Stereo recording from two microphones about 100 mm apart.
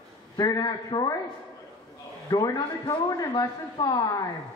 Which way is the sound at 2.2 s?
40° left (ahead or behind).